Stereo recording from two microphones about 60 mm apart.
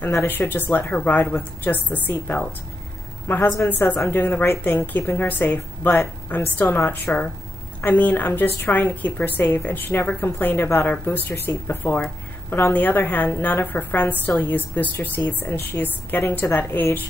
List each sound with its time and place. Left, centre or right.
0.5 s a woman's voice: left
4.5 s a woman's voice: left